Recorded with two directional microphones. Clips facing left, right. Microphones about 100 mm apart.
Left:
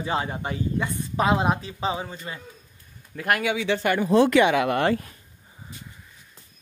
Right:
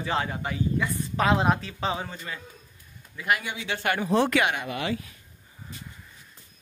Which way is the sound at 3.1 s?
55° left (ahead or behind).